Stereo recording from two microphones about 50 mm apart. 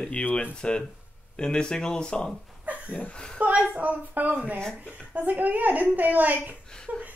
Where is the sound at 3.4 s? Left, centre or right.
Right.